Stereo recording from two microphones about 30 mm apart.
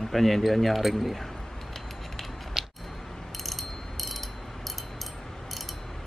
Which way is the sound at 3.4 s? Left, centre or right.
Centre.